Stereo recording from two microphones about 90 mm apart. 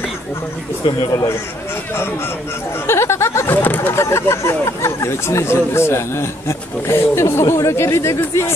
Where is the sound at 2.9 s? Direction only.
30° left (ahead or behind).